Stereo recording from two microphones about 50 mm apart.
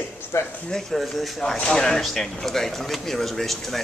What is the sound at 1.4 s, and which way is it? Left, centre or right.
Speech, centre.